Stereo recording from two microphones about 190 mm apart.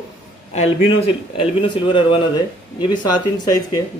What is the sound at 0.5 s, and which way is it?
Speech, 30° left (ahead or behind).